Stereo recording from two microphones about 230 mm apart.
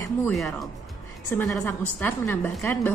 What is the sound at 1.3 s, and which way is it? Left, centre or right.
A woman's voice, centre.